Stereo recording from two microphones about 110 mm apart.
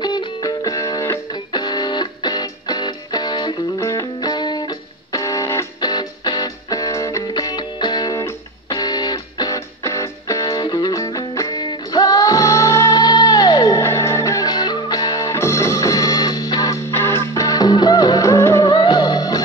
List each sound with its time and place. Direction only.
0.0 s music: 40° left (ahead or behind)
1.5 s music: 40° left (ahead or behind)
5.8 s music: 40° left (ahead or behind)
13.0 s music: 40° left (ahead or behind)
16.9 s music: 25° left (ahead or behind)
18.7 s music: 40° left (ahead or behind)